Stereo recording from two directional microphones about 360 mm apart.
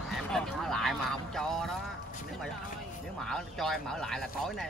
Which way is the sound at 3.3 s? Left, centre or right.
Centre.